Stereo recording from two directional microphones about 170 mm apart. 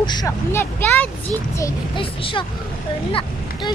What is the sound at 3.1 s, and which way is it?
Speech, 30° left (ahead or behind).